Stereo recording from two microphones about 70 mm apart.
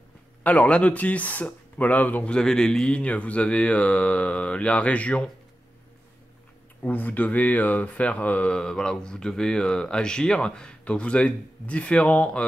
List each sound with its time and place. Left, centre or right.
0.4 s speech: centre
2.3 s speech: centre
6.8 s speech: left